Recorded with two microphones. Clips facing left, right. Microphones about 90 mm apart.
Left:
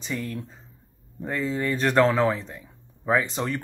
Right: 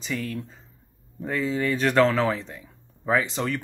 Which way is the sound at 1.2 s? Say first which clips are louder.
Right 1 dB; 20° left (ahead or behind).